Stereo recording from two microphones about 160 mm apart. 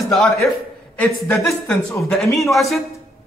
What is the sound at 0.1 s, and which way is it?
Speech, centre (ahead or behind).